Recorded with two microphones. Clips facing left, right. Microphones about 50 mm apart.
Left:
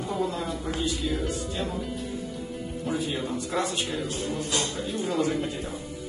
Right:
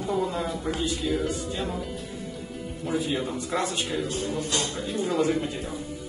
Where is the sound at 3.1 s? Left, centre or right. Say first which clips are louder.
Right 2 dB; centre.